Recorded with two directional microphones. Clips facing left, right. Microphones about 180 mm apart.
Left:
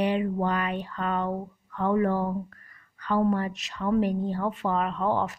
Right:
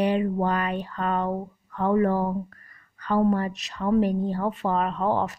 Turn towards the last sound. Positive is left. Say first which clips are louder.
# right 2 dB
turn(degrees=-40)  # may be behind; listen again after turning